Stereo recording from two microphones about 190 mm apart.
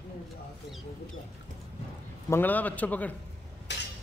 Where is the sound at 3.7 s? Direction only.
65° left (ahead or behind).